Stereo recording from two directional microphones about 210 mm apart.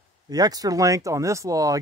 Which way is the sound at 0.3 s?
20° right (ahead or behind).